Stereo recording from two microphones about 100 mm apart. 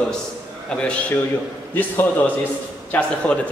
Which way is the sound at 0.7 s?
10° left (ahead or behind).